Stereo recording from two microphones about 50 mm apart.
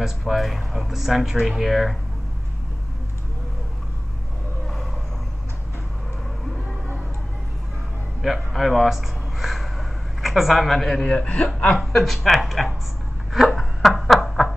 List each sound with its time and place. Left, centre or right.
0.0 s speech: centre
8.2 s speech: centre
11.4 s speech: left
11.8 s speech: centre
13.5 s snicker: centre